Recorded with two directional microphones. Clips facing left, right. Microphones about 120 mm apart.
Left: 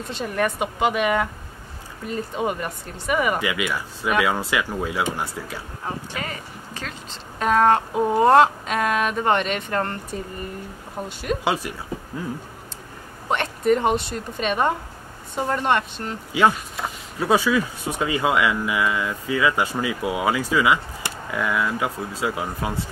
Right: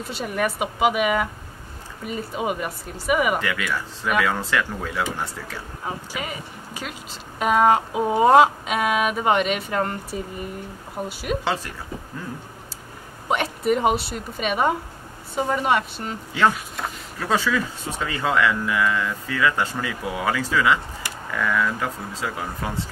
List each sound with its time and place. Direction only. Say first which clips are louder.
0.0 s speech: left 1 dB; 5° right (ahead or behind)
3.3 s speech: left 1 dB; 10° left (ahead or behind)
5.9 s speech: even; 5° right (ahead or behind)
11.4 s speech: left 2 dB; 10° left (ahead or behind)
13.3 s speech: left 1 dB; 5° right (ahead or behind)
17.2 s speech: left 3 dB; 15° left (ahead or behind)